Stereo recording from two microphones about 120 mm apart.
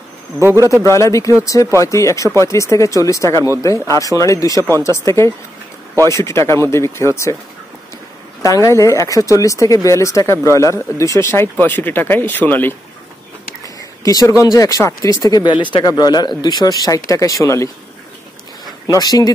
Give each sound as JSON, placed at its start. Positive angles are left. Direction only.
{"t": 0.4, "sound": "a man's voice", "side_deg": -20}
{"t": 0.9, "sound": "speech", "side_deg": 25}
{"t": 8.4, "sound": "speech", "side_deg": 25}
{"t": 14.0, "sound": "speech", "side_deg": 30}
{"t": 18.9, "sound": "speech", "side_deg": 30}